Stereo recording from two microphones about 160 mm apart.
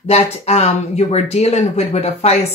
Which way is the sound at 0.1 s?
40° left (ahead or behind).